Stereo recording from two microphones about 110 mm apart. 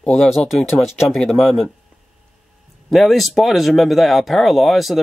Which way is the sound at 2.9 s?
Centre (ahead or behind).